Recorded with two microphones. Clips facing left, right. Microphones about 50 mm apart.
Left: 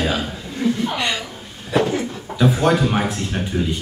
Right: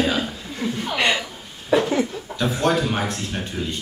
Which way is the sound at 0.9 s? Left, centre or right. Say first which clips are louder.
Right 2 dB; right.